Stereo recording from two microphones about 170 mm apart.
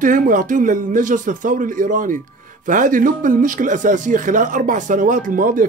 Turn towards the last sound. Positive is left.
turn(degrees=-50)  # may be behind; listen again after turning